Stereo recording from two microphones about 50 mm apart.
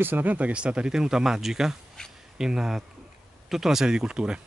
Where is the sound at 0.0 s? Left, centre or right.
Right.